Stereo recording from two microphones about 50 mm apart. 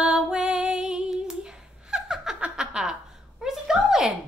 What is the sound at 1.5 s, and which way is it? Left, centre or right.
Laughter, centre.